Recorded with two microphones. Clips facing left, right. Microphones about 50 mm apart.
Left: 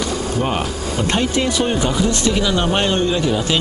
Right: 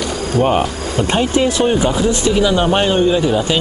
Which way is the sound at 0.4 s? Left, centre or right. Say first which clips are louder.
Right 10 dB; centre.